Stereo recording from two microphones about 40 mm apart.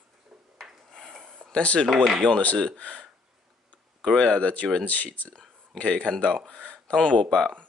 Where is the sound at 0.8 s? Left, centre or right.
Centre.